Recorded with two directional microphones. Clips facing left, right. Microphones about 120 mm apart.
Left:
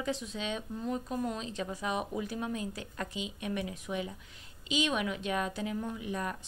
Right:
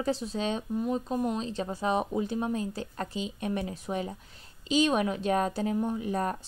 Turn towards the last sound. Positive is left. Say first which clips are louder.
# right 6 dB
turn(degrees=-40)  # may be behind; listen again after turning